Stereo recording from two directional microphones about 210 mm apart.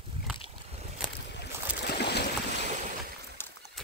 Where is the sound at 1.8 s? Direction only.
50° left (ahead or behind).